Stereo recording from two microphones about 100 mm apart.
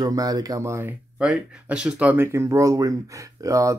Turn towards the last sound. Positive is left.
turn(degrees=-35)  # may be behind; listen again after turning